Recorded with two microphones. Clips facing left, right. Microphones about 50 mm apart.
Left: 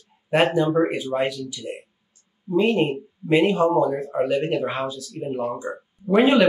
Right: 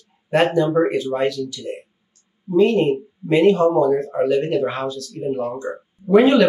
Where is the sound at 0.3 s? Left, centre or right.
Centre.